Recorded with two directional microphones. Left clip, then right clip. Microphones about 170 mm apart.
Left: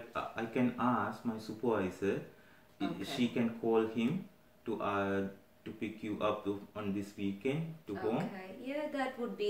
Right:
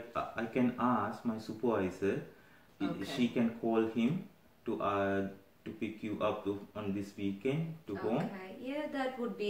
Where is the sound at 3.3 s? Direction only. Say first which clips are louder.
Left 2 dB; 15° right (ahead or behind).